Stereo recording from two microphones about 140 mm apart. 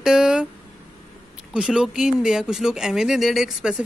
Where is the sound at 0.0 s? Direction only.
5° right (ahead or behind).